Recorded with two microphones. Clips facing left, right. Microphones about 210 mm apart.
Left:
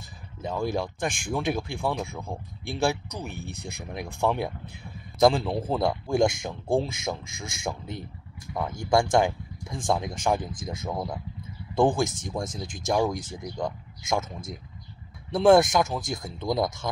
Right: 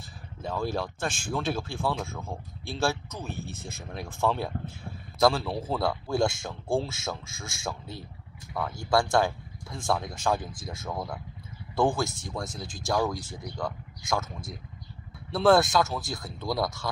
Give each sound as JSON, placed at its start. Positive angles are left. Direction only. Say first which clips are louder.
{"t": 0.4, "sound": "speech", "louder": "left 2 dB", "side_deg": 15}